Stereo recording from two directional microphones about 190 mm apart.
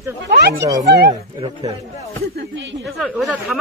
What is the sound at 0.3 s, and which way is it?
Speech, 60° right (ahead or behind).